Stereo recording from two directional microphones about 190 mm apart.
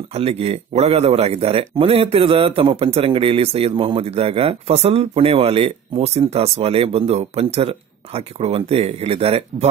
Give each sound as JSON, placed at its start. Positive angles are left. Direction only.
{"t": 0.1, "sound": "speech", "side_deg": -35}